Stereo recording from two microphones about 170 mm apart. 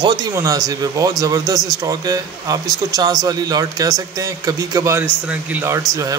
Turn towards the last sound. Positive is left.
turn(degrees=-20)  # may be behind; listen again after turning